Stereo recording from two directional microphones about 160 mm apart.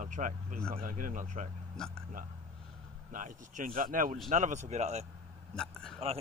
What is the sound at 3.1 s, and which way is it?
Speech, 55° right (ahead or behind).